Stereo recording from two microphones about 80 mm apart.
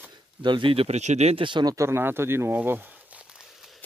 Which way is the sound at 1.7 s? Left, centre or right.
Right.